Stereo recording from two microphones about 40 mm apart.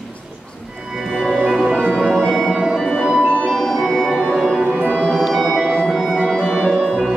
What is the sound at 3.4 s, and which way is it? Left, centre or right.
Music, centre.